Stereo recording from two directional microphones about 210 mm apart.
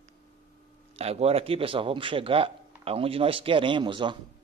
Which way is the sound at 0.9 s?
30° right (ahead or behind).